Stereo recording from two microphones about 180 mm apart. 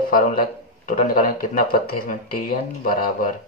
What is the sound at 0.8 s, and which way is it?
Speech, 55° left (ahead or behind).